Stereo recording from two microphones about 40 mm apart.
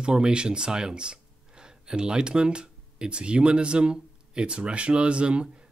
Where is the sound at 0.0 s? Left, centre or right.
Right.